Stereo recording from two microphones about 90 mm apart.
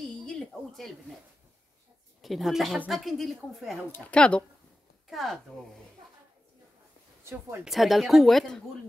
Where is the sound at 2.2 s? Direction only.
Centre (ahead or behind).